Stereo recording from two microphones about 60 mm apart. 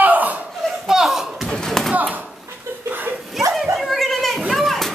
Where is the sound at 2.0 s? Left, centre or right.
Right.